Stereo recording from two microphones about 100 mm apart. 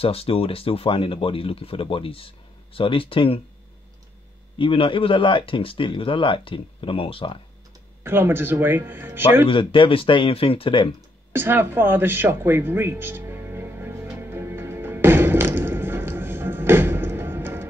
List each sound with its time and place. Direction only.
0.0 s speech: 75° left (ahead or behind)
4.6 s speech: 60° left (ahead or behind)
8.0 s speech: 20° right (ahead or behind)
9.5 s speech: 60° left (ahead or behind)
11.3 s music: 20° right (ahead or behind)